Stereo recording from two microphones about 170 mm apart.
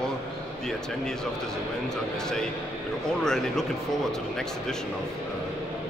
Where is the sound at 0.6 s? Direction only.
5° left (ahead or behind).